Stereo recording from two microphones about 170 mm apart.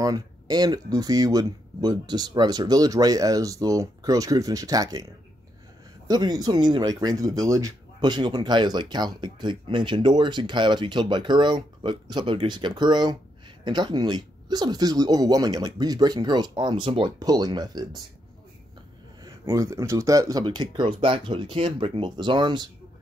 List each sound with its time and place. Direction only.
0.0 s speech: 20° right (ahead or behind)
19.2 s speech: 20° right (ahead or behind)